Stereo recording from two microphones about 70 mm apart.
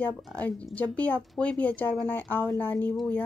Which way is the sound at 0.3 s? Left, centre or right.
Centre.